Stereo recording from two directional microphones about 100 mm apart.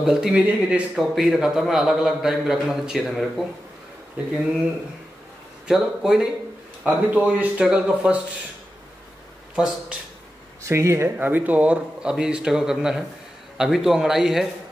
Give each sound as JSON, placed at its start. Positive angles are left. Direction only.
{"t": 0.0, "sound": "a man's voice", "side_deg": -5}
{"t": 5.7, "sound": "a man's voice", "side_deg": -5}
{"t": 10.6, "sound": "a man's voice", "side_deg": -30}